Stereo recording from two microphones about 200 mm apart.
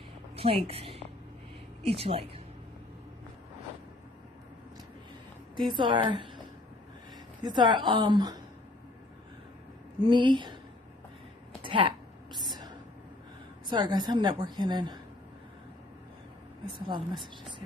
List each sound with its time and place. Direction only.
0.7 s a woman's voice: 30° right (ahead or behind)
5.7 s a woman's voice: 25° right (ahead or behind)
7.4 s a woman's voice: 20° right (ahead or behind)
10.0 s a woman's voice: 25° right (ahead or behind)
11.6 s a sound: 25° right (ahead or behind)
12.4 s whispering: 20° right (ahead or behind)
13.7 s a woman's voice: 20° right (ahead or behind)
16.7 s a woman's voice: 25° right (ahead or behind)